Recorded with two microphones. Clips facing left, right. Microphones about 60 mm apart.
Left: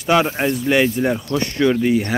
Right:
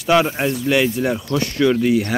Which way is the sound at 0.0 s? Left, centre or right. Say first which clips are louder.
Even; centre.